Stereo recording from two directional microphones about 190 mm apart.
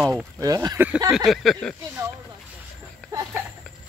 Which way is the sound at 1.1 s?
Centre (ahead or behind).